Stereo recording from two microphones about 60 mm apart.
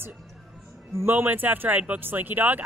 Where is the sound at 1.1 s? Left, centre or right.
Right.